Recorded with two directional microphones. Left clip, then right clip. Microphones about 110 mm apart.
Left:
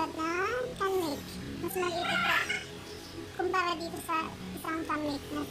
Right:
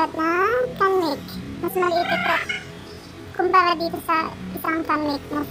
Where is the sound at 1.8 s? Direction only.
15° right (ahead or behind).